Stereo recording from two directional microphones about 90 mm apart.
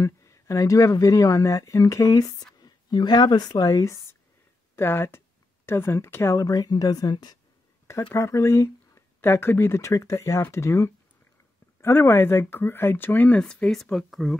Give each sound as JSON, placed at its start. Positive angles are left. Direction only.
{"t": 0.0, "sound": "speech", "side_deg": 35}
{"t": 8.1, "sound": "speech", "side_deg": 30}
{"t": 13.4, "sound": "speech", "side_deg": 10}